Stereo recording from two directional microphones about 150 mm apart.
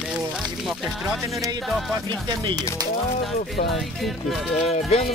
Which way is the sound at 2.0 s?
30° right (ahead or behind).